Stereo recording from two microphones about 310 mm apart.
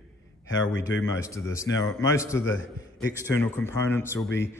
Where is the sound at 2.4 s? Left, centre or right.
Left.